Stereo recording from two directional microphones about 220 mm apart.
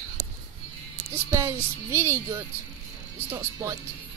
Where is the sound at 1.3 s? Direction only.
15° right (ahead or behind).